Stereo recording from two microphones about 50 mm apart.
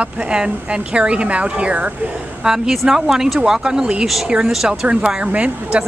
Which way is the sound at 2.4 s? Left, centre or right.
Centre.